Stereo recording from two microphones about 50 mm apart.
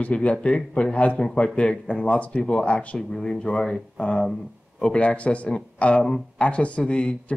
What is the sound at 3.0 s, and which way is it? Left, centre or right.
Speech, centre.